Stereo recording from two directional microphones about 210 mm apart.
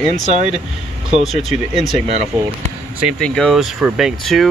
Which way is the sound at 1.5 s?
Centre (ahead or behind).